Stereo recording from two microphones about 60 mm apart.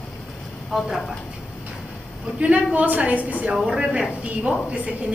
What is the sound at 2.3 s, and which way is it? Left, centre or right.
Speech, right.